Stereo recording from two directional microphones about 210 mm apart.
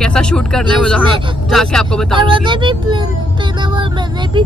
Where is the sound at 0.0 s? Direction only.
5° left (ahead or behind).